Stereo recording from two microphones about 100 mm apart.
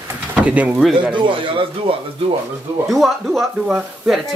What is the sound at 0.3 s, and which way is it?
Speech, 15° right (ahead or behind).